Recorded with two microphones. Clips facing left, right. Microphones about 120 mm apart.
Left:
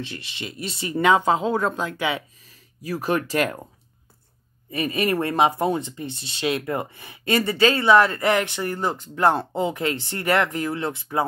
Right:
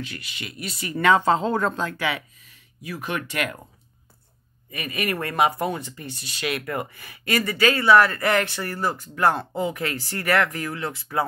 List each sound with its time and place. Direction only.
0.0 s speech: 30° left (ahead or behind)
1.1 s speech: 10° left (ahead or behind)
2.4 s speech: 35° left (ahead or behind)
4.6 s speech: 30° left (ahead or behind)